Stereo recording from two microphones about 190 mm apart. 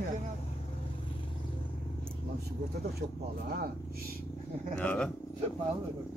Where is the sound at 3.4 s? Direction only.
55° right (ahead or behind).